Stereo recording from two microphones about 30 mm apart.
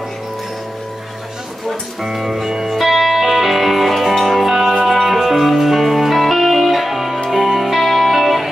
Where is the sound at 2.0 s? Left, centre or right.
Centre.